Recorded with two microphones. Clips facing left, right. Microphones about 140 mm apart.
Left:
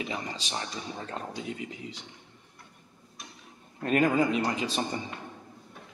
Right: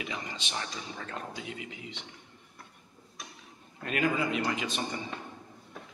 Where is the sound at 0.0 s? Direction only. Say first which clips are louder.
Left 4 dB; 35° left (ahead or behind).